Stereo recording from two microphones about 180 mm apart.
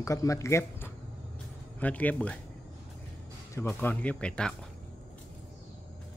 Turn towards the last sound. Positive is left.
turn(degrees=5)  # may be behind; listen again after turning